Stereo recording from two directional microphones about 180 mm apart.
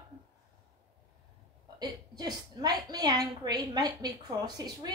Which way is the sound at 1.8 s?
20° right (ahead or behind).